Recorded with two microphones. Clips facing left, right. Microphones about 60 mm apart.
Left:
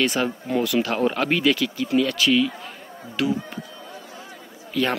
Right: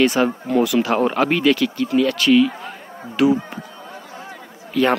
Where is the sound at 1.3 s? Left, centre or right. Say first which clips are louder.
Right 4 dB; centre.